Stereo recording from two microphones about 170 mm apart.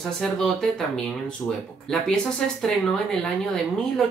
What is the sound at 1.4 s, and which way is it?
Speech, 15° left (ahead or behind).